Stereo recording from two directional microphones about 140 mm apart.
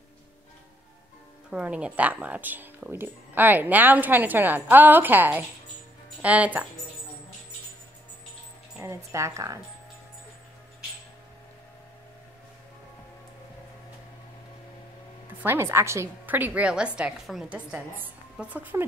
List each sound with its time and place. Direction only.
1.5 s speech: 10° right (ahead or behind)
8.7 s speech: 20° right (ahead or behind)
15.4 s speech: 15° right (ahead or behind)